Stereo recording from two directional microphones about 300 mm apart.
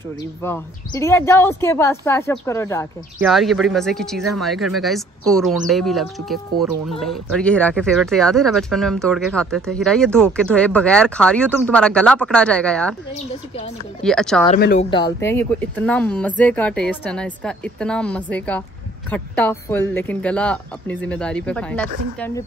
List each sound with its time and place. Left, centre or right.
0.4 s a woman's voice: centre
14.0 s speech: centre
14.6 s speech: left
14.9 s speech: centre